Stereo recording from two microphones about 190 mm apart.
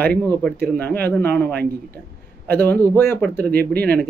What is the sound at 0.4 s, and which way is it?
Speech, 5° left (ahead or behind).